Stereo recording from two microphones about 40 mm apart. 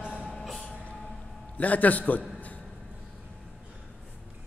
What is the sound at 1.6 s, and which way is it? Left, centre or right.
Speech, left.